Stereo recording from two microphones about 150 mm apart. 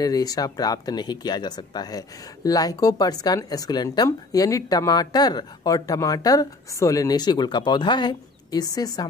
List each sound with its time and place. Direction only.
0.0 s speech: 25° left (ahead or behind)